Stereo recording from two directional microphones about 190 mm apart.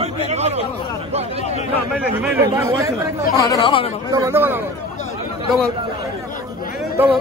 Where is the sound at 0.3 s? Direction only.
35° right (ahead or behind).